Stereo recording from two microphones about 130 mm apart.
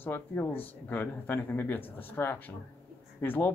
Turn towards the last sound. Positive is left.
turn(degrees=15)  # may be behind; listen again after turning